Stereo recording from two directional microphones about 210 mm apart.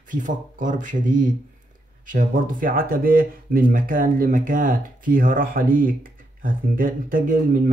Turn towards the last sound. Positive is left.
turn(degrees=-40)  # may be behind; listen again after turning